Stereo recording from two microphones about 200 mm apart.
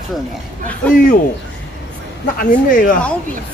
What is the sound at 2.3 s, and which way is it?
Speech, 45° left (ahead or behind).